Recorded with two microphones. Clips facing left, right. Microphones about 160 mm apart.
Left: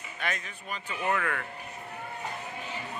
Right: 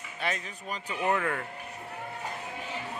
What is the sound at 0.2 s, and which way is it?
Speech, 30° right (ahead or behind).